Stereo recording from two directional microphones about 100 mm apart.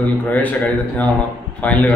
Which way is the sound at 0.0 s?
15° left (ahead or behind).